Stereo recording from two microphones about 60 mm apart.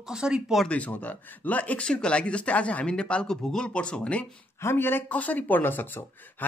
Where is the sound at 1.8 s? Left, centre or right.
Centre.